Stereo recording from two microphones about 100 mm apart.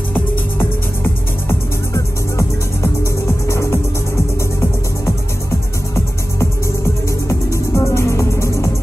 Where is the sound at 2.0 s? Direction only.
30° left (ahead or behind).